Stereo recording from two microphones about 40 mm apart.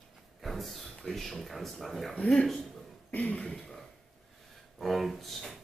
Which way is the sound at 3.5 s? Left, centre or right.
Centre.